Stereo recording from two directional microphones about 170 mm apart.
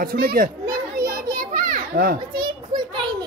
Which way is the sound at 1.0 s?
55° right (ahead or behind).